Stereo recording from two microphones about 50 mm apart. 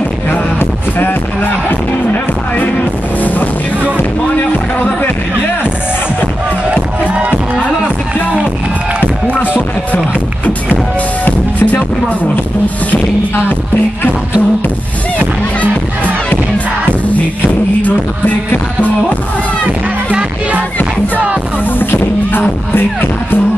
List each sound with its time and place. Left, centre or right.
0.3 s music: left
6.7 s music: right
11.2 s music: left
17.4 s music: left
19.6 s music: right
21.7 s music: left